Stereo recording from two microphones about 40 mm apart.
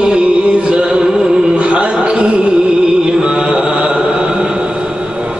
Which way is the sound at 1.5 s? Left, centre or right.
Right.